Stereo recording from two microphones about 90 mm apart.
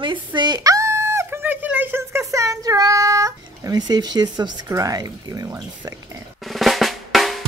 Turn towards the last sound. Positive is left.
turn(degrees=0)  # may be behind; listen again after turning